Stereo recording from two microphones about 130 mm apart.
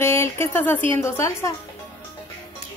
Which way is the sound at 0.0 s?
20° left (ahead or behind).